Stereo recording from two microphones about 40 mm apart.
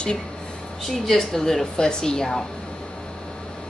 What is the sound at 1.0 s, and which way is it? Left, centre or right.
Speech, centre.